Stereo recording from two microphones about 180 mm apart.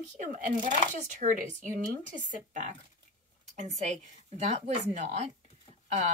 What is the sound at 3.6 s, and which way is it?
Speech, 40° right (ahead or behind).